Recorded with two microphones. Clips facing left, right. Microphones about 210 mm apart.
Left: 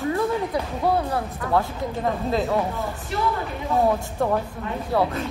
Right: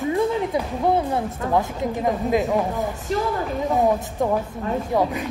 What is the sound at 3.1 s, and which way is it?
Speech, 40° right (ahead or behind).